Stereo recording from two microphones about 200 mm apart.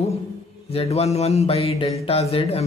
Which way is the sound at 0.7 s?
30° left (ahead or behind).